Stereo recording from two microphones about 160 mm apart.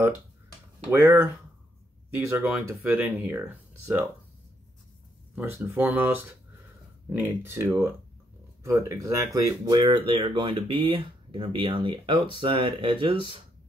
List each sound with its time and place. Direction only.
0.9 s speech: 10° right (ahead or behind)
5.3 s speech: 10° right (ahead or behind); by 13.4 s 30° right (ahead or behind)